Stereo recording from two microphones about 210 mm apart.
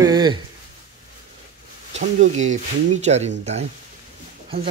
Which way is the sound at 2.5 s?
35° right (ahead or behind).